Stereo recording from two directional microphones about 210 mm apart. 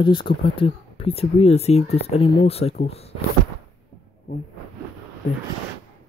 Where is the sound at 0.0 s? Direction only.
25° left (ahead or behind).